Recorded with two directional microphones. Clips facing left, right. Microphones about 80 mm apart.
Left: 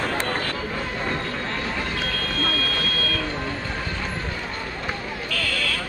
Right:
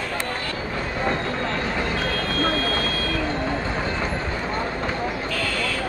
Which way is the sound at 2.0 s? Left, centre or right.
Right.